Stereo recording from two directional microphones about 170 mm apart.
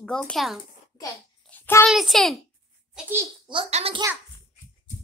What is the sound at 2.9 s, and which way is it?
Speech, 15° right (ahead or behind).